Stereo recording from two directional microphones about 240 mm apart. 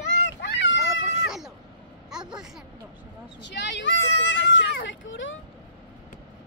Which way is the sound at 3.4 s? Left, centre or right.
Left.